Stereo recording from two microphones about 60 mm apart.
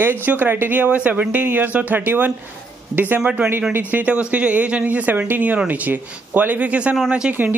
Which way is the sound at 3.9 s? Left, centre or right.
Right.